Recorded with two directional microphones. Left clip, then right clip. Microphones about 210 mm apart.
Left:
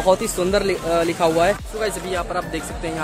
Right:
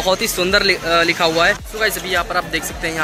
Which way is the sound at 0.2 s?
5° left (ahead or behind).